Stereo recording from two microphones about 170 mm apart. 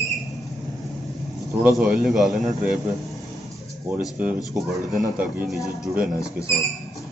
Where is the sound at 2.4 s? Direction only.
45° right (ahead or behind).